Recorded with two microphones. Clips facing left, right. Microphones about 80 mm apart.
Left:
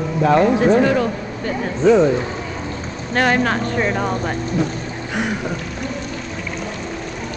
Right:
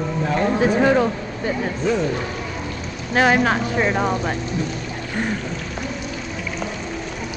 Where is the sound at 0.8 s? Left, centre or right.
Centre.